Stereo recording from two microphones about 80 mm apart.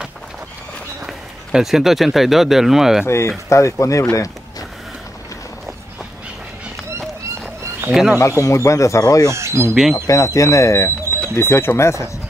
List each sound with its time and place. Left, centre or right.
1.0 s speech: centre
3.1 s speech: left
4.1 s a sound: left
7.9 s speech: centre
8.2 s speech: left
9.3 s speech: right
9.9 s speech: left